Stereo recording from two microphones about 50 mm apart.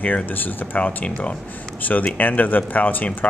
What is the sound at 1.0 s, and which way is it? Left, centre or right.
Speech, left.